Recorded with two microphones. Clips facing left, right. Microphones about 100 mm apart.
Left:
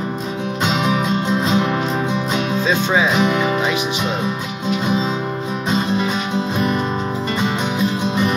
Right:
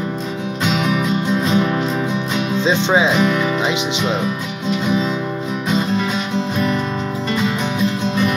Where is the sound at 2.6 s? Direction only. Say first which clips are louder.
Right 3 dB; 20° right (ahead or behind).